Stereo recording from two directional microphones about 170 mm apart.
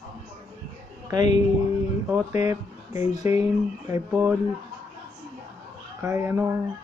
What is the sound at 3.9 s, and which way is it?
Speech, 10° right (ahead or behind).